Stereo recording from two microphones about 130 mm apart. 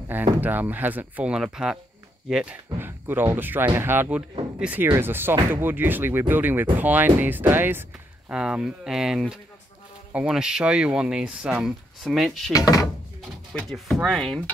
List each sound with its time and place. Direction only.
0.1 s speech: 15° right (ahead or behind)
2.8 s speech: 15° right (ahead or behind); by 12.5 s centre (ahead or behind)
12.5 s speech: 25° left (ahead or behind)
13.2 s speech: centre (ahead or behind)